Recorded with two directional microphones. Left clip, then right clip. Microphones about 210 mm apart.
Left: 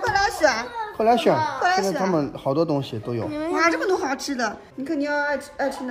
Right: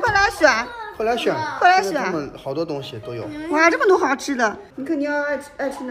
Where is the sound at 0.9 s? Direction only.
50° left (ahead or behind).